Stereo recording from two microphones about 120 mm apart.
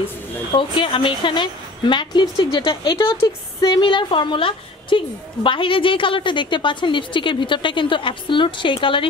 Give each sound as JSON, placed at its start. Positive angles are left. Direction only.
{"t": 0.5, "sound": "a woman's voice", "side_deg": 45}